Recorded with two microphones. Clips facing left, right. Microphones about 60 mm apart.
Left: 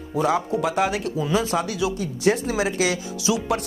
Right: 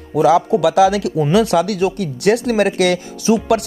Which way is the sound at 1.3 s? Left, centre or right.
Right.